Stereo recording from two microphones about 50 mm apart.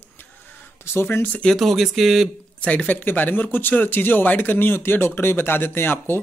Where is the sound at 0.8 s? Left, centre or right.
Left.